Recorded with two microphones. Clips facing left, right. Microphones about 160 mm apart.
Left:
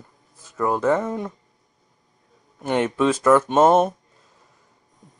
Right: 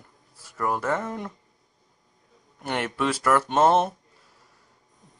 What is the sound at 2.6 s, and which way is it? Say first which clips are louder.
Speech: left 7 dB; 20° left (ahead or behind).